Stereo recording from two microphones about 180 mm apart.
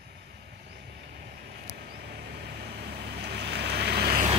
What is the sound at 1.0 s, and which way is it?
Vehicle, 60° right (ahead or behind).